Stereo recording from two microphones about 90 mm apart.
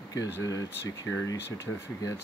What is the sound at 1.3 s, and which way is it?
Speech, 40° left (ahead or behind).